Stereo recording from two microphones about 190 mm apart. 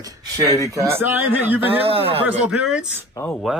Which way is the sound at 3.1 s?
10° left (ahead or behind).